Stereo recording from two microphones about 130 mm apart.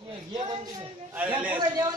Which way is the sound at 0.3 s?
30° right (ahead or behind).